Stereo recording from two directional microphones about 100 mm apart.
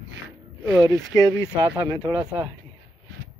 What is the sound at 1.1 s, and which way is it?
Speech, 35° left (ahead or behind).